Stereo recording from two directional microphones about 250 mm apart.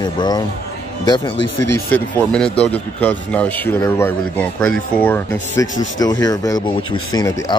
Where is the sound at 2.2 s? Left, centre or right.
Centre.